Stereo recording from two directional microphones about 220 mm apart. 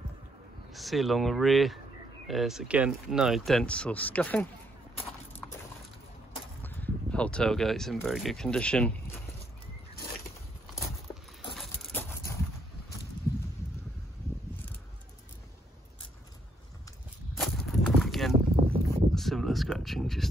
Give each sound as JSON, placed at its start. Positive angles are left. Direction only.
{"t": 0.7, "sound": "speech", "side_deg": 0}
{"t": 6.6, "sound": "speech", "side_deg": 5}
{"t": 11.5, "sound": "vehicle", "side_deg": 0}
{"t": 17.4, "sound": "a sound", "side_deg": 0}
{"t": 18.3, "sound": "boat", "side_deg": -25}
{"t": 19.1, "sound": "a sound", "side_deg": 0}